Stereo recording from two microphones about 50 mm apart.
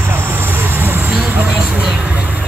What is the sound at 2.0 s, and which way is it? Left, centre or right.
Vehicle, right.